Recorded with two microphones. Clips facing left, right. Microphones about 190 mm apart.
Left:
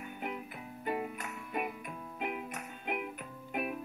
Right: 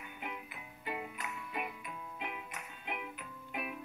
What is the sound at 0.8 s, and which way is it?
Music, 45° left (ahead or behind).